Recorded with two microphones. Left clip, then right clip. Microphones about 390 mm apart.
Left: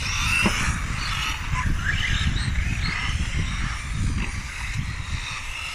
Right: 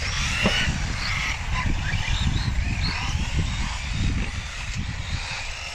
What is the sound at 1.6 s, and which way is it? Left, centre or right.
Vehicle, right.